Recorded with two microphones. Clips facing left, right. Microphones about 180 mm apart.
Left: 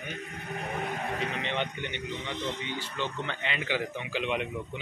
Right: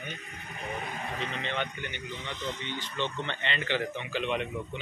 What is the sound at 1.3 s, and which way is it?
Speech, 15° left (ahead or behind).